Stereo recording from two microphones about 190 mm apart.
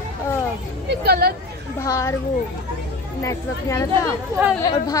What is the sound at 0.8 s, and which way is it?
Speech, 55° right (ahead or behind).